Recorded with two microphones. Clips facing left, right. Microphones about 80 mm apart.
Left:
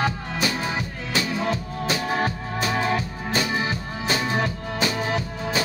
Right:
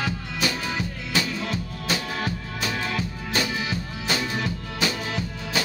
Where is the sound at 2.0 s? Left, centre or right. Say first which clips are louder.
Left 5 dB; left.